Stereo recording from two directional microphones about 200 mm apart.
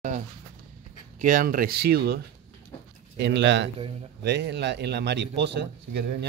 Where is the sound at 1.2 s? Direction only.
40° right (ahead or behind).